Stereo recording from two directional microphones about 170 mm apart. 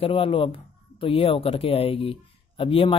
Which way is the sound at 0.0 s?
30° left (ahead or behind).